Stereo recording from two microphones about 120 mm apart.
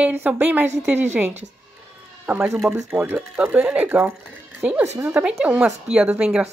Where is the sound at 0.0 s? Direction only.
15° right (ahead or behind).